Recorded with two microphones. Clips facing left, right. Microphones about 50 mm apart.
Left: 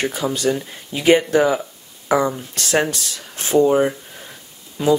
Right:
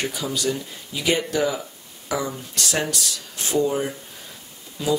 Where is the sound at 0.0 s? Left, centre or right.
Left.